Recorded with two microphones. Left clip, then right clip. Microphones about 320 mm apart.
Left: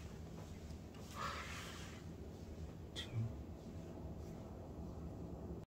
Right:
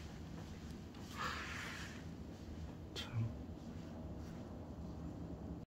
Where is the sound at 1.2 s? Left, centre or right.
Centre.